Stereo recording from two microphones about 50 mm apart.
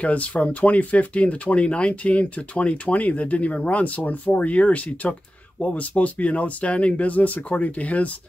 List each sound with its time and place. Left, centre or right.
0.0 s speech: left